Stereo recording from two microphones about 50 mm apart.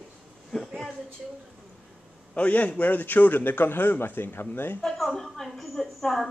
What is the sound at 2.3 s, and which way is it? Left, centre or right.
A man's voice, left.